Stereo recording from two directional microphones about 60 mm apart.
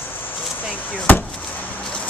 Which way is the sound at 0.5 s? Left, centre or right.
Left.